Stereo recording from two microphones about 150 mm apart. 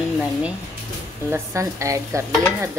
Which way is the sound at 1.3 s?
20° right (ahead or behind).